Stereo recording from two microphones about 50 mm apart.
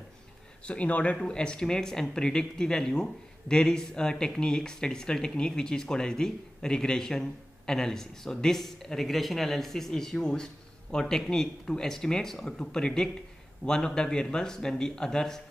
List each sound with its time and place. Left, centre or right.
0.7 s speech: left
1.1 s speech: centre